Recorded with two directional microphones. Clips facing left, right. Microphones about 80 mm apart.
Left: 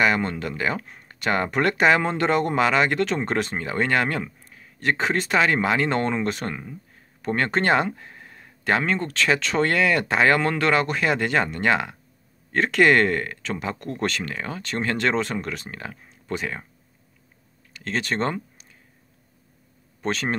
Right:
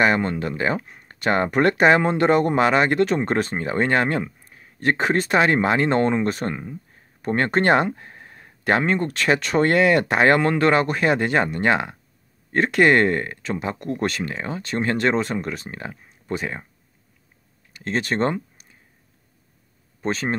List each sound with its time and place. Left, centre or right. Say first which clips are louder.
0.0 s speech: right 2 dB; right
6.5 s speech: right 3 dB; centre
7.2 s speech: right 3 dB; right
17.8 s speech: right 3 dB; right